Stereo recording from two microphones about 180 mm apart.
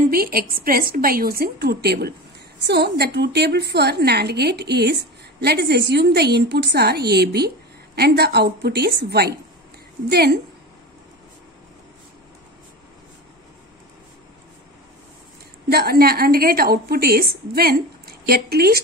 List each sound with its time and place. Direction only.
0.1 s a woman's voice: 55° right (ahead or behind)
15.7 s a woman's voice: 60° right (ahead or behind)